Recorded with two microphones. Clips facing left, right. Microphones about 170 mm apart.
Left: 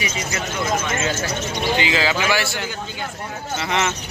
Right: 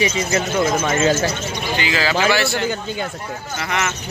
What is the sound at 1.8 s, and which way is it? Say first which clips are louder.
Speech: right 4 dB; 20° left (ahead or behind).